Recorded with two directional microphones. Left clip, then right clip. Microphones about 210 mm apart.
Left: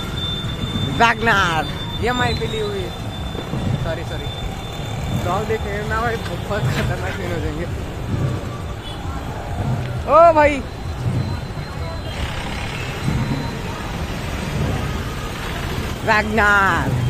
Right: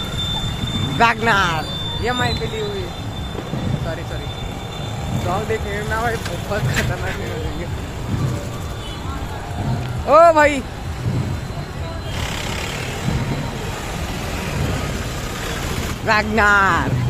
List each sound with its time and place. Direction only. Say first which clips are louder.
0.9 s speech: even; centre (ahead or behind)
2.0 s speech: left 1 dB; 15° left (ahead or behind)
5.9 s speech: even; 5° left (ahead or behind)
10.0 s speech: even; 25° right (ahead or behind)
16.1 s speech: even; 5° right (ahead or behind)